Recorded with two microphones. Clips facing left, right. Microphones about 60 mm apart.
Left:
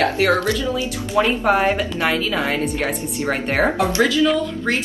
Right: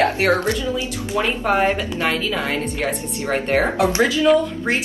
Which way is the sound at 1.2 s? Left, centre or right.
Centre.